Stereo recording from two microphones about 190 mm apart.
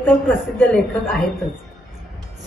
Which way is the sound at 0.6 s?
Centre (ahead or behind).